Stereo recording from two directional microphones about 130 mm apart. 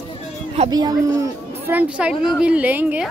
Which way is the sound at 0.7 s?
30° right (ahead or behind).